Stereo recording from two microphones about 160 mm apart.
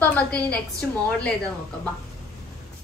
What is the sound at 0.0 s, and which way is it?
Speech, 10° left (ahead or behind).